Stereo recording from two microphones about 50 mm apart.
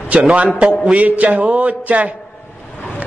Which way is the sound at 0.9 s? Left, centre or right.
Right.